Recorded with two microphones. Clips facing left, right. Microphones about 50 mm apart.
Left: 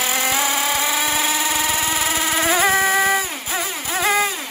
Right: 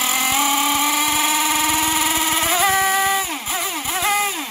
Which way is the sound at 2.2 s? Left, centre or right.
Left.